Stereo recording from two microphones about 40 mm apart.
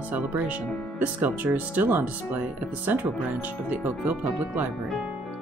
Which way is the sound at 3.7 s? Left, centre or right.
Right.